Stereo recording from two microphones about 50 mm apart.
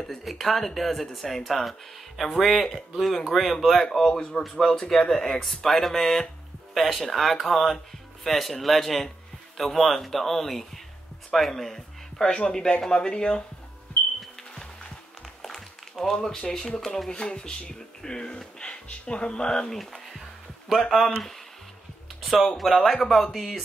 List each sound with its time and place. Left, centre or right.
0.0 s speech: centre
12.3 s speech: centre
14.5 s music: centre
15.4 s speech: centre
20.8 s speech: centre
22.2 s music: centre
22.5 s speech: centre